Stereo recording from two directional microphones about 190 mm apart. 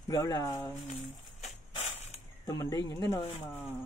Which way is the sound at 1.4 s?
35° left (ahead or behind).